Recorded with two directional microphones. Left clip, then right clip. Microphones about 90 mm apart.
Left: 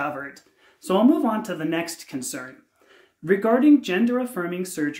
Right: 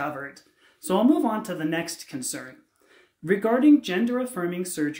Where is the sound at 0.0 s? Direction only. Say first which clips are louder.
Left 2 dB; 25° left (ahead or behind).